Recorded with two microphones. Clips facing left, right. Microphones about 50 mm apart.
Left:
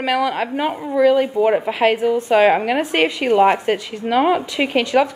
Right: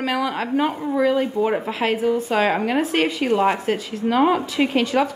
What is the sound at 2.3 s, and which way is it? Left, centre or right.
Sizzle, centre.